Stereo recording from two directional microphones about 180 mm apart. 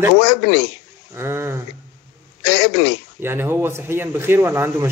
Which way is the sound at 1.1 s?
15° right (ahead or behind).